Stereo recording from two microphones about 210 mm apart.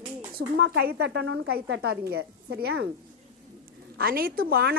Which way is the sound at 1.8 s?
50° right (ahead or behind).